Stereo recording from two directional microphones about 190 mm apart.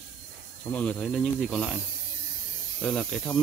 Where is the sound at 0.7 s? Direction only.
5° left (ahead or behind).